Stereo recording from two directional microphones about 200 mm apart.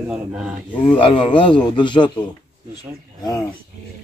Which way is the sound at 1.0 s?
25° left (ahead or behind).